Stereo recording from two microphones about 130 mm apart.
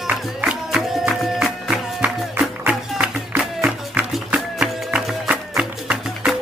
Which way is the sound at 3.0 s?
15° right (ahead or behind).